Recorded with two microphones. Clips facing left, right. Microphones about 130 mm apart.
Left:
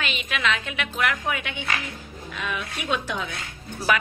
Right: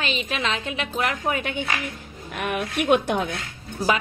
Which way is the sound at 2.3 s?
55° right (ahead or behind).